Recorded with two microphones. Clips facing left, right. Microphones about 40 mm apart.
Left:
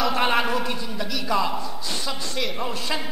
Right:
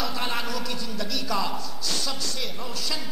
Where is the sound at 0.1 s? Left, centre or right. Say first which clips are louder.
Left 8 dB; left.